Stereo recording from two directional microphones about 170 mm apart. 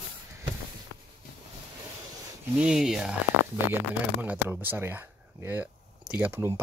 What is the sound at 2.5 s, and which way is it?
Speech, 5° right (ahead or behind).